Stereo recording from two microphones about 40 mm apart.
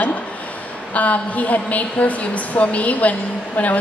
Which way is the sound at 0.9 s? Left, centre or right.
Left.